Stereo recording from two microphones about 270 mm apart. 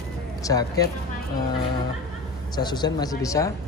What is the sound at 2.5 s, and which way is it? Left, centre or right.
A man's voice, centre.